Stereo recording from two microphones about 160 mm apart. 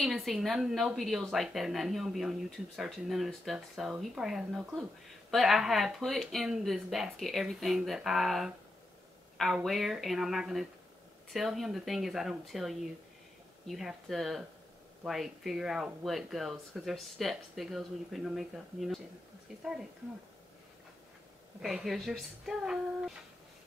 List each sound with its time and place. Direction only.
0.0 s speech: centre (ahead or behind)
21.5 s speech: centre (ahead or behind)